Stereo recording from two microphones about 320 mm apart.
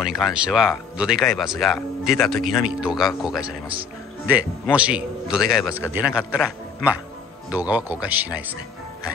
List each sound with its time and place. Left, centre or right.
0.0 s speech: centre